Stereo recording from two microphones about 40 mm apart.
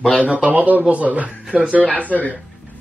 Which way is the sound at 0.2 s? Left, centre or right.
Right.